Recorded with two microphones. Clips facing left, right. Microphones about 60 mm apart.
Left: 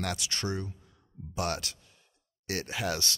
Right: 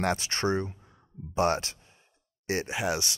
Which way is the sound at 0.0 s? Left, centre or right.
Right.